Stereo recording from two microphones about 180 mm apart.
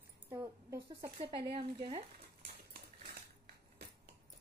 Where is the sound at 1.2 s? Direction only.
30° right (ahead or behind).